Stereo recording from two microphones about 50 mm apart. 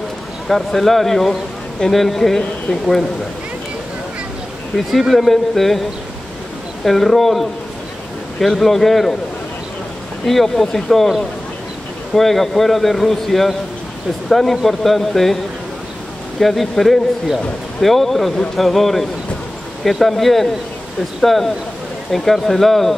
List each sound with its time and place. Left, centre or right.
0.5 s speech: centre
4.7 s speech: centre
10.2 s speech: centre
16.3 s speech: centre